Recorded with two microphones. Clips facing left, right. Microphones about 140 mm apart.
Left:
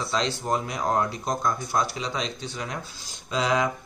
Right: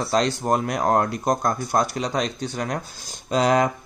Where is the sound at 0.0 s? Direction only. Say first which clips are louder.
Right 6 dB; 55° right (ahead or behind).